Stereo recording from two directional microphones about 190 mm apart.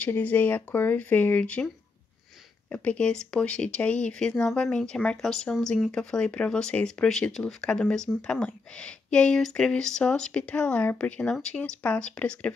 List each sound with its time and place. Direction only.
0.0 s speech: 10° left (ahead or behind)
2.7 s speech: 5° left (ahead or behind)